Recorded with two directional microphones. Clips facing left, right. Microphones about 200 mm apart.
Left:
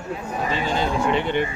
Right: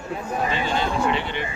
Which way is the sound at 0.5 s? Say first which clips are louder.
Left 4 dB; 40° left (ahead or behind).